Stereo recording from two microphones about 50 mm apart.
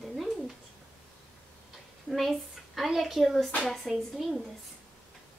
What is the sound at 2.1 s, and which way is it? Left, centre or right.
A woman's voice, centre.